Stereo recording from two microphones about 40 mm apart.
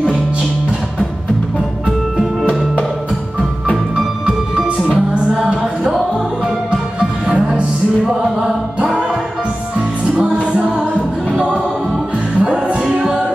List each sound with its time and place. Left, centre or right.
3.9 s music: centre
10.0 s music: centre
11.3 s music: centre